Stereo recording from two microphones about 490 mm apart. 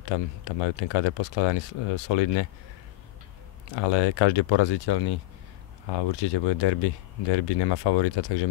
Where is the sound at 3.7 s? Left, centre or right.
Left.